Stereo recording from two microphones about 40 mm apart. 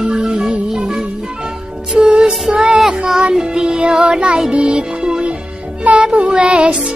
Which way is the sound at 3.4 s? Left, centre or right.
Right.